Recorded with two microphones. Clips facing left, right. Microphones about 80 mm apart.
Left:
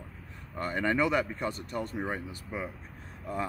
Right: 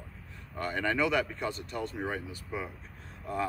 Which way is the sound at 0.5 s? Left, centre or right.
Left.